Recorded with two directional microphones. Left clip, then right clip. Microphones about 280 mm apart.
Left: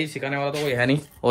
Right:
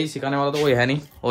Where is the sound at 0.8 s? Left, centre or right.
Centre.